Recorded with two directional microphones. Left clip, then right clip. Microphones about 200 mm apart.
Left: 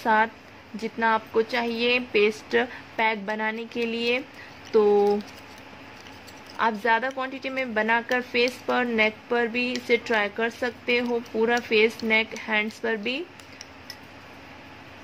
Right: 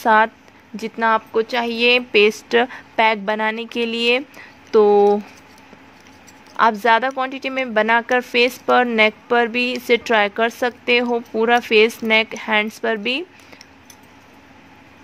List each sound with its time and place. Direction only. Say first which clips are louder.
0.0 s speech: right 7 dB; 50° right (ahead or behind)
6.5 s speech: right 8 dB; 50° right (ahead or behind)